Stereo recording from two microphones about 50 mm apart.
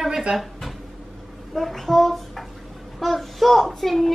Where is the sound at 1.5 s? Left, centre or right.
Centre.